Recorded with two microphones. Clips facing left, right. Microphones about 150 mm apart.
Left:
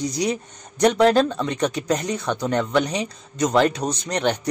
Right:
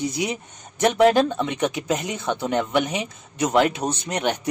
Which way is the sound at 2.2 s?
20° right (ahead or behind).